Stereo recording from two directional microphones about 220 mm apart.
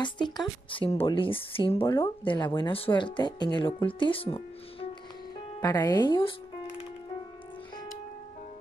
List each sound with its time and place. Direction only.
0.0 s speech: 20° left (ahead or behind)